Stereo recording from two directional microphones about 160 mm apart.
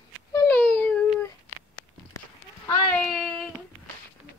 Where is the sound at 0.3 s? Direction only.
15° left (ahead or behind).